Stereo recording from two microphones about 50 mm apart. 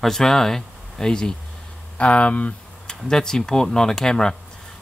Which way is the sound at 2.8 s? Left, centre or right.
Centre.